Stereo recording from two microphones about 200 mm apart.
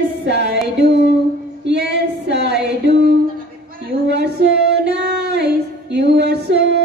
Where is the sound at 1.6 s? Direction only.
60° right (ahead or behind).